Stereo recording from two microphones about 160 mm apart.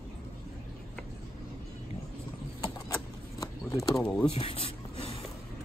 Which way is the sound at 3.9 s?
5° left (ahead or behind).